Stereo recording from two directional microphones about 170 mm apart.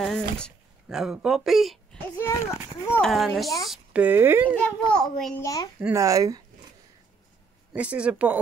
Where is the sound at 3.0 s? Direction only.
Centre (ahead or behind).